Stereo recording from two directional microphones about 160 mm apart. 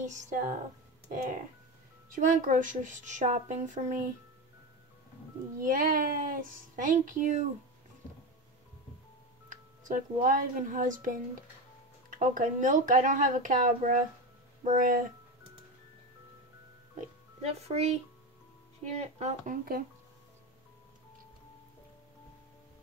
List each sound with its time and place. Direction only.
0.0 s a woman's voice: 50° right (ahead or behind)
2.1 s a woman's voice: 55° right (ahead or behind)
5.6 s a woman's voice: 55° right (ahead or behind)
9.5 s a woman's voice: 55° right (ahead or behind)
17.0 s speech: 40° right (ahead or behind)
18.9 s a woman's voice: 40° right (ahead or behind); by 19.8 s 60° right (ahead or behind)